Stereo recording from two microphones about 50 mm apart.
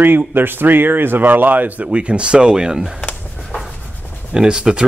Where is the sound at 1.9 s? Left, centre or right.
Right.